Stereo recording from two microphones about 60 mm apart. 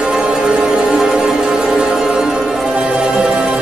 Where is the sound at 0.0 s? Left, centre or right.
Centre.